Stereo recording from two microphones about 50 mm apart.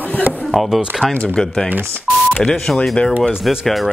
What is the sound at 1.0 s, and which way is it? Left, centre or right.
Speech, left.